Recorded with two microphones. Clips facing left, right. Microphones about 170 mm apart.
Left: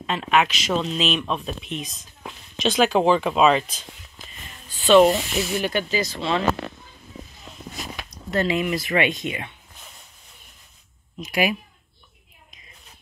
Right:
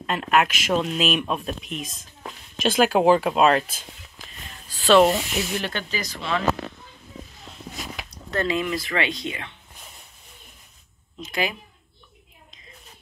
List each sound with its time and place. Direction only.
0.0 s speech: 5° right (ahead or behind)
2.5 s speech: 5° right (ahead or behind)
5.7 s speech: 10° left (ahead or behind)
5.9 s speech: 25° left (ahead or behind)
8.1 s speech: 20° left (ahead or behind)